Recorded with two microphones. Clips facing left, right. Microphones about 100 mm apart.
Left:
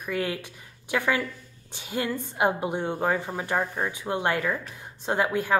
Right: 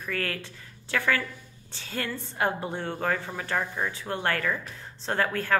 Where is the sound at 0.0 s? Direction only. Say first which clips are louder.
Left 3 dB; 15° left (ahead or behind).